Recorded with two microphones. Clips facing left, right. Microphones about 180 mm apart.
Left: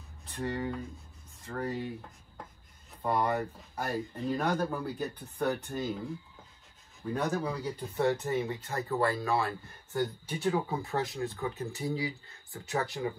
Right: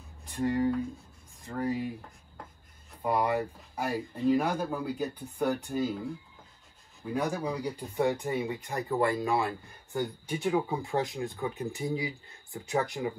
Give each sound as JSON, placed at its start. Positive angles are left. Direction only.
{"t": 0.3, "sound": "speech", "side_deg": -10}
{"t": 3.0, "sound": "speech", "side_deg": -10}
{"t": 7.2, "sound": "speech", "side_deg": -10}